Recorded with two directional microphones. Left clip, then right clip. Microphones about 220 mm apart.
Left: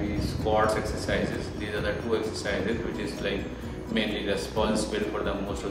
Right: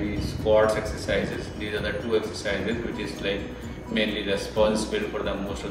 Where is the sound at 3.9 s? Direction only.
5° left (ahead or behind).